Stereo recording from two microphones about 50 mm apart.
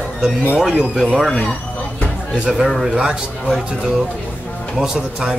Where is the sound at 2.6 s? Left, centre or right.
Centre.